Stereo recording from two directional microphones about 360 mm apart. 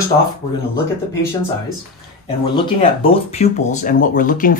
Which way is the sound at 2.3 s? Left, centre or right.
Centre.